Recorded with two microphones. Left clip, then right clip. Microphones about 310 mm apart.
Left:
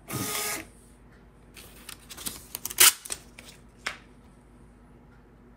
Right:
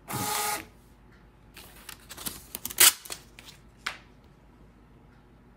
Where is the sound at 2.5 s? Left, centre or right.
Right.